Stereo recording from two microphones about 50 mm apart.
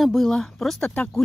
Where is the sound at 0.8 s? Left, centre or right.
Left.